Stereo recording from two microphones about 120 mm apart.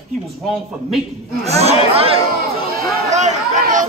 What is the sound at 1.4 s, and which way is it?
Speech, 60° right (ahead or behind).